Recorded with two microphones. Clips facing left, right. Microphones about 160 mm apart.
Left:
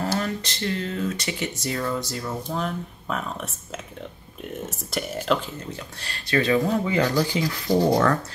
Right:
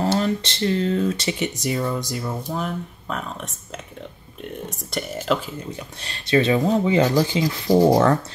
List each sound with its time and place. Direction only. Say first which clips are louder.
0.0 s speech: right 5 dB; 25° right (ahead or behind); by 5.4 s centre (ahead or behind)
5.9 s speech: right 5 dB; 20° right (ahead or behind)